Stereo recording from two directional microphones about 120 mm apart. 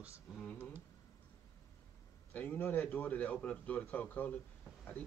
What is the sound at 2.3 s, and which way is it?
Speech, 15° left (ahead or behind).